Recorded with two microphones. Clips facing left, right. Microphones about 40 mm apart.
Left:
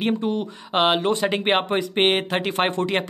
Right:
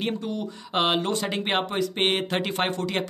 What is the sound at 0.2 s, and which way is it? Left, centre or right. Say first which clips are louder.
Speech: left 6 dB; left.